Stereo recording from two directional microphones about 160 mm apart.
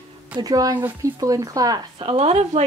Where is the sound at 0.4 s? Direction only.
20° right (ahead or behind).